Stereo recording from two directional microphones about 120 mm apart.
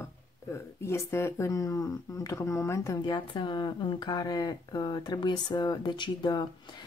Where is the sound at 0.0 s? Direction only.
20° left (ahead or behind).